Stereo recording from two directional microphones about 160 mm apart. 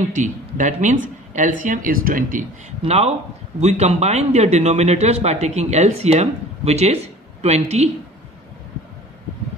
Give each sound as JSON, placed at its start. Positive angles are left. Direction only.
{"t": 0.1, "sound": "speech", "side_deg": -50}
{"t": 2.8, "sound": "speech", "side_deg": -40}